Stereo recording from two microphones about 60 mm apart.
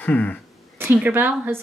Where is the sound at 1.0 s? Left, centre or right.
Right.